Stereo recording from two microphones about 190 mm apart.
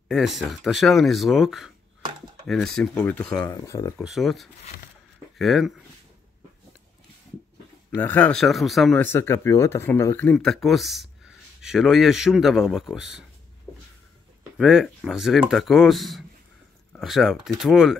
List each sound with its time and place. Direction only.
0.1 s speech: centre (ahead or behind)
3.4 s speech: 20° left (ahead or behind)
4.0 s speech: centre (ahead or behind)
8.0 s speech: 10° left (ahead or behind)
9.0 s speech: 10° left (ahead or behind)
14.6 s speech: 5° right (ahead or behind)